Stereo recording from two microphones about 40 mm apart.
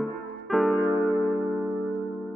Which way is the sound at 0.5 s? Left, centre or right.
Centre.